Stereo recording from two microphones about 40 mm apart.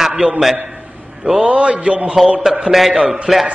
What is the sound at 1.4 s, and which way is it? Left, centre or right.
Speech, right.